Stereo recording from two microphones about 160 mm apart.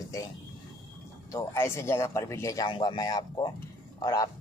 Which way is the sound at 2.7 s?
30° left (ahead or behind).